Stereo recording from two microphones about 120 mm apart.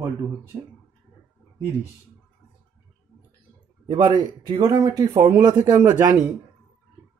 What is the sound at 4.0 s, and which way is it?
A man's voice, 35° right (ahead or behind).